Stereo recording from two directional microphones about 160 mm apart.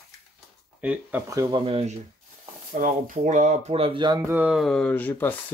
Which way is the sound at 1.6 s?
35° right (ahead or behind).